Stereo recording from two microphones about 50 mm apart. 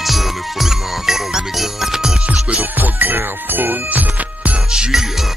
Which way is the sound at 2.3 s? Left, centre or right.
Right.